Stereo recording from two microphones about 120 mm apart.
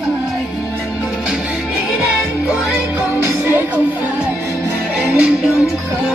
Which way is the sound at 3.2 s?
20° right (ahead or behind).